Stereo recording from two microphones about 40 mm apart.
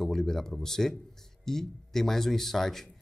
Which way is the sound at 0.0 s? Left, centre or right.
Centre.